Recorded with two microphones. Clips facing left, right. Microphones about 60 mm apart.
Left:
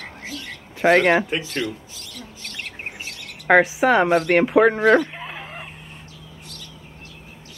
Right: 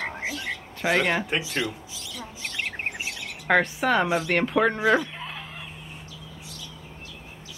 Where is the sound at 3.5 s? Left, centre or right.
Centre.